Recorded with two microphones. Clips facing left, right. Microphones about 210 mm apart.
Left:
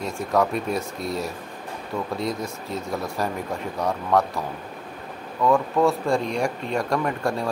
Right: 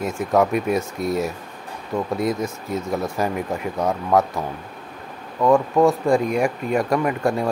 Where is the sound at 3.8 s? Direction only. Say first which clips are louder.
Right 3 dB; 20° right (ahead or behind).